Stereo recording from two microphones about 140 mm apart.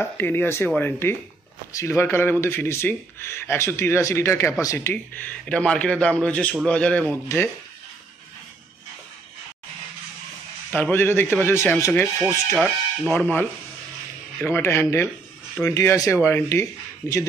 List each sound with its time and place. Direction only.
0.0 s speech: 15° left (ahead or behind)
10.7 s speech: 15° left (ahead or behind)